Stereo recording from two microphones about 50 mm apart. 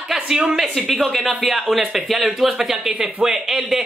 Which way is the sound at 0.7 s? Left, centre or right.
Centre.